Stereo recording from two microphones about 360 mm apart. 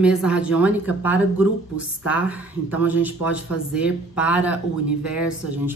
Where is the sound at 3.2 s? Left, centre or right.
Left.